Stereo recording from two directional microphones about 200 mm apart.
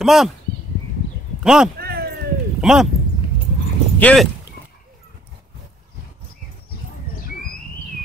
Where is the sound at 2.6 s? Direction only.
Centre (ahead or behind).